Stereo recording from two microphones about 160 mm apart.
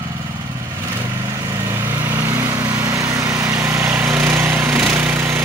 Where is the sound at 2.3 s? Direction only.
20° right (ahead or behind).